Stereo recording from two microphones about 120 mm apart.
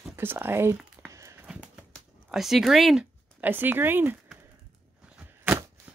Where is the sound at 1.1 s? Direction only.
25° right (ahead or behind).